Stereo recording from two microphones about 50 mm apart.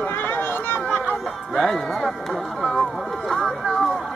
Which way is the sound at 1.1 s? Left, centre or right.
Centre.